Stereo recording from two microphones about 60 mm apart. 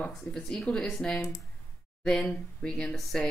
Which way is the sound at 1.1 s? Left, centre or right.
Left.